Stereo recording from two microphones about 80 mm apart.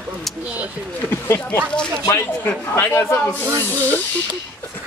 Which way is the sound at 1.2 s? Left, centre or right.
Left.